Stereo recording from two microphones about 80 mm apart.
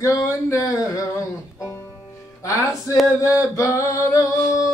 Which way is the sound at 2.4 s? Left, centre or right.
Left.